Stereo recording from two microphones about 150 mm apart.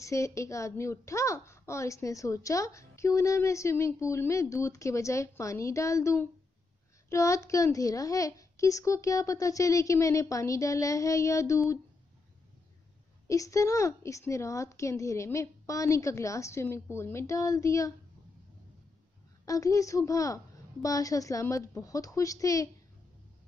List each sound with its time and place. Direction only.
0.0 s a woman's voice: 20° left (ahead or behind)
13.3 s a woman's voice: 20° left (ahead or behind)
19.4 s a woman's voice: 20° left (ahead or behind)